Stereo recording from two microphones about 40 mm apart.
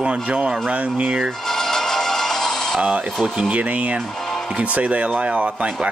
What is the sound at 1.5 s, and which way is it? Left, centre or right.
Music, centre.